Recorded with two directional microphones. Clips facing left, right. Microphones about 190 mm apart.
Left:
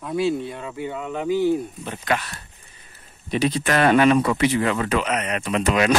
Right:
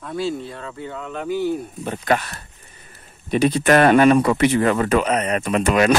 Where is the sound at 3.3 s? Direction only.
50° right (ahead or behind).